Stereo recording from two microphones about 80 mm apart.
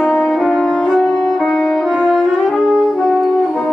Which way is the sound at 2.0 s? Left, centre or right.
Centre.